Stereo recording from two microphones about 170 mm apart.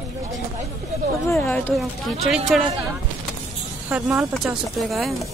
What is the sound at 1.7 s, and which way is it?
Speech, centre (ahead or behind).